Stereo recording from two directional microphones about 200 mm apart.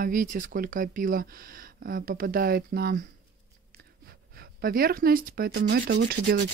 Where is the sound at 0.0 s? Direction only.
40° right (ahead or behind).